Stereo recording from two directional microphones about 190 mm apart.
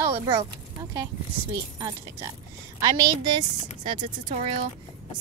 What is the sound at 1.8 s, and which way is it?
Speech, 20° right (ahead or behind).